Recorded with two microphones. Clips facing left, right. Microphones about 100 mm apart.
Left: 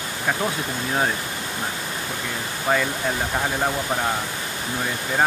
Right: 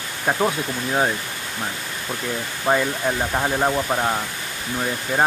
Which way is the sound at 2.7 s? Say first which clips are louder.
Right 2 dB; 25° right (ahead or behind).